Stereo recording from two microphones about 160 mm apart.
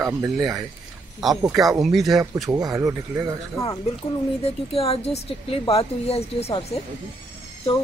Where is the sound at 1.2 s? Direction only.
Centre (ahead or behind).